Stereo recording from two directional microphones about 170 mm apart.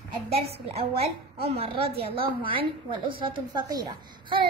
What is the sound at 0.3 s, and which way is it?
A woman's voice, 35° right (ahead or behind).